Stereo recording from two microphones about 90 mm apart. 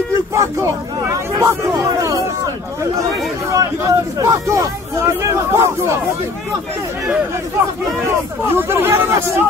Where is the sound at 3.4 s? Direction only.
35° right (ahead or behind).